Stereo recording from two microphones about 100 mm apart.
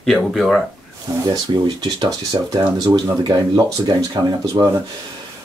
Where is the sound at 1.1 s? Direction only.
35° right (ahead or behind).